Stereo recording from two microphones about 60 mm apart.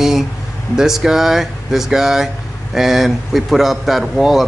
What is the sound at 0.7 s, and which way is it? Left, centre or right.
Speech, centre.